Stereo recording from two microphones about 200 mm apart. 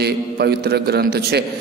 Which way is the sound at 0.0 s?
55° right (ahead or behind).